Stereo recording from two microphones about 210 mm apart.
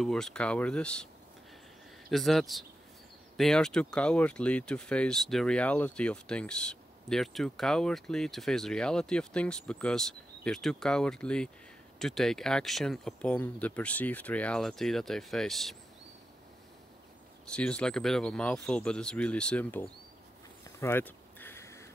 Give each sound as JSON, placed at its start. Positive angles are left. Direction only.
{"t": 0.0, "sound": "speech", "side_deg": 5}
{"t": 2.0, "sound": "speech", "side_deg": 0}
{"t": 17.5, "sound": "speech", "side_deg": 5}
{"t": 20.6, "sound": "a sound", "side_deg": 10}